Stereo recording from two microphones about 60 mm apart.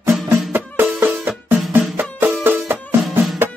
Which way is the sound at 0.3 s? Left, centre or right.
Right.